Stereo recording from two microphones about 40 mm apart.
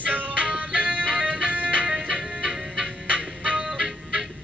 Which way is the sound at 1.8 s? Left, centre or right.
Centre.